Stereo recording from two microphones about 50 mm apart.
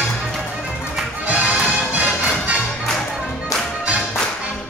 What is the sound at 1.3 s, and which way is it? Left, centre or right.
Music, right.